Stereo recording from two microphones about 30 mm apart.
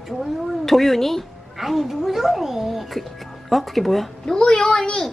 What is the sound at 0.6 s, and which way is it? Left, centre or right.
Speech, centre.